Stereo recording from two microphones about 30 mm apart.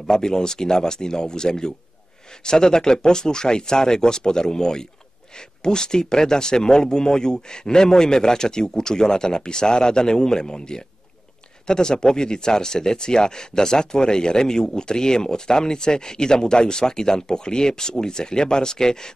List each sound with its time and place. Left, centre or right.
0.0 s speech: left